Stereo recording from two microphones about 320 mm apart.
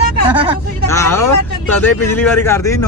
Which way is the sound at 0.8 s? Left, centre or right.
Centre.